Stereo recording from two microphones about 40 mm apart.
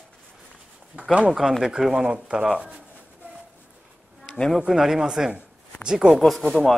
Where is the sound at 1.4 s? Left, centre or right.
Centre.